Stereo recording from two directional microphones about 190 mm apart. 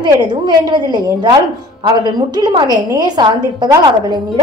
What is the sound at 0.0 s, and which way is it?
A woman's voice, 25° right (ahead or behind).